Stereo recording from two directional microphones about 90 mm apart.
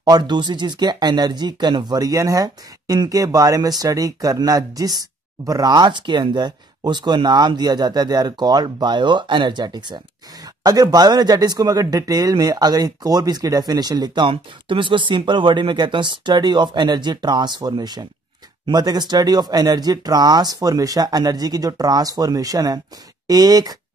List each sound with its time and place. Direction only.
0.0 s speech: 55° right (ahead or behind)